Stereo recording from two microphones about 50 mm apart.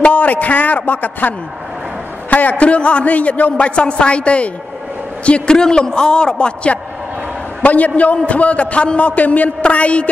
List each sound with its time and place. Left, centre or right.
0.0 s a man's voice: left